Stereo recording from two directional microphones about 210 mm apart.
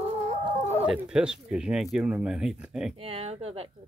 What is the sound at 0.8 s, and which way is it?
Speech, 5° right (ahead or behind).